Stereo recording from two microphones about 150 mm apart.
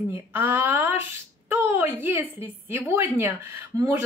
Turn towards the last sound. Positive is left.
turn(degrees=-15)  # may be behind; listen again after turning